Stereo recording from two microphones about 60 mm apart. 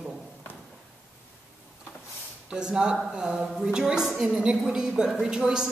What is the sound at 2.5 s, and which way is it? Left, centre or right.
A man's voice, centre.